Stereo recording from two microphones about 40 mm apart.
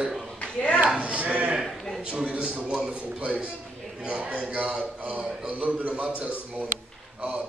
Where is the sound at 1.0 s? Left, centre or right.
Right.